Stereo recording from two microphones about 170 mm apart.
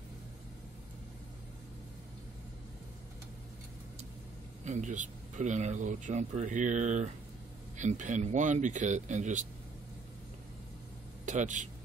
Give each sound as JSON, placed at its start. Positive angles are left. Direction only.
{"t": 4.6, "sound": "speech", "side_deg": -45}
{"t": 11.2, "sound": "a man's voice", "side_deg": -45}